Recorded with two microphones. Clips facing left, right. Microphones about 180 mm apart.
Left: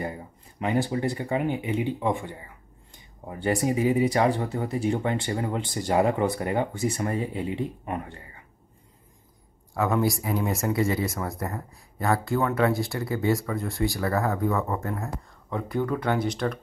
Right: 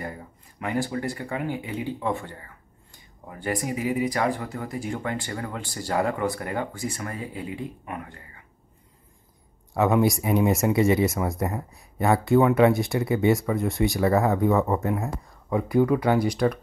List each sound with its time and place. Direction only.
0.0 s speech: 20° left (ahead or behind)
3.3 s speech: 25° left (ahead or behind)
9.8 s speech: 20° right (ahead or behind)